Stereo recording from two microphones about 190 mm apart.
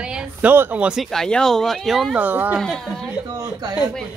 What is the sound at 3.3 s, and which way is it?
Speech, 20° right (ahead or behind).